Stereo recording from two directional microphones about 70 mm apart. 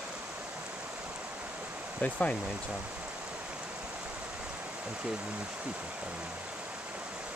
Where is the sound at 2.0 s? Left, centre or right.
Centre.